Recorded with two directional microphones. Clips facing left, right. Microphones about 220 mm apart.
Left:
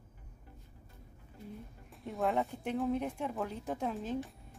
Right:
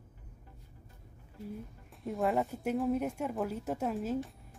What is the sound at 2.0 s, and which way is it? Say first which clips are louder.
A woman's voice: right 2 dB; centre (ahead or behind).